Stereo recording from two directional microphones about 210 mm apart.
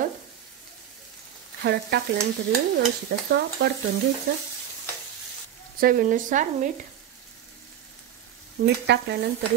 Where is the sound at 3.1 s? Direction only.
50° right (ahead or behind).